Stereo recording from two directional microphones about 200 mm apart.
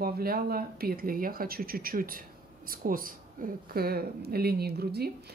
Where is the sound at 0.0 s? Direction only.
50° right (ahead or behind).